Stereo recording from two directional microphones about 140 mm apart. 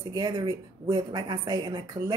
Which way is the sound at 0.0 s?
25° right (ahead or behind).